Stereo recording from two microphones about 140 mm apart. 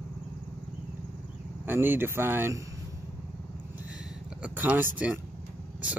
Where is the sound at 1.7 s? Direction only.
15° right (ahead or behind).